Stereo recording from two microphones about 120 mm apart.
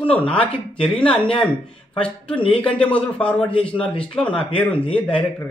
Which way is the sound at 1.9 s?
10° left (ahead or behind).